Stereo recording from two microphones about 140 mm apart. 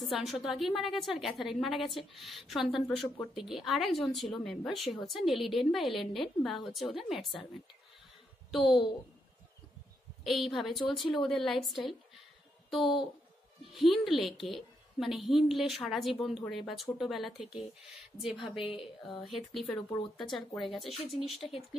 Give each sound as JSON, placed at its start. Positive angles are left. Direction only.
{"t": 0.0, "sound": "a woman's voice", "side_deg": 0}
{"t": 8.5, "sound": "a woman's voice", "side_deg": 0}
{"t": 10.2, "sound": "a woman's voice", "side_deg": 0}
{"t": 18.8, "sound": "speech", "side_deg": 35}
{"t": 19.2, "sound": "a woman's voice", "side_deg": 0}